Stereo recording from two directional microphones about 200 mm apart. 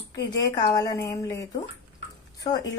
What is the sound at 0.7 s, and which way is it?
A woman's voice, 20° left (ahead or behind).